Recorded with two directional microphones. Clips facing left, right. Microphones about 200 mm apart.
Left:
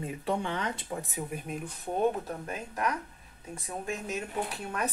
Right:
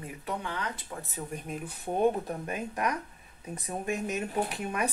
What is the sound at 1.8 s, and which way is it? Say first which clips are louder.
Speech: right 2 dB; 10° right (ahead or behind).